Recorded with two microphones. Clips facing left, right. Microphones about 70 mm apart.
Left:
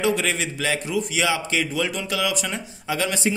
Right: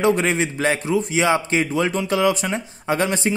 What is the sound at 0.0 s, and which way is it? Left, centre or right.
A man's voice, right.